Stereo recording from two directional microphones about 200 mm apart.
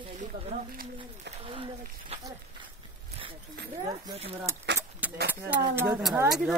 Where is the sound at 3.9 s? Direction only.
25° right (ahead or behind).